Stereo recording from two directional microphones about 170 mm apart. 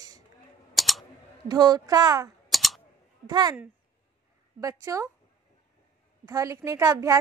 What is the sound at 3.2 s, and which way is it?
Speech, 20° right (ahead or behind).